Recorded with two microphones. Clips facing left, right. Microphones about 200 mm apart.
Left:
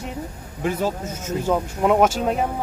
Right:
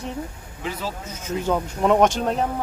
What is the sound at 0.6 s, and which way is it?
Speech, 50° left (ahead or behind).